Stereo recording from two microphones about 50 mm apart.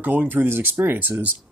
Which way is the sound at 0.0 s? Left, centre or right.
Right.